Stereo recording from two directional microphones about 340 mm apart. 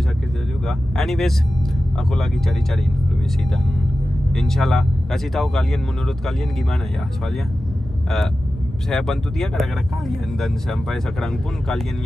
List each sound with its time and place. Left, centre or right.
0.7 s speech: centre
4.3 s speech: centre
8.9 s speech: centre